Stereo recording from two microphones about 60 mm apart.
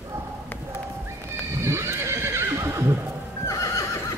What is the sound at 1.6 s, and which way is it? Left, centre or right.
Horse, right.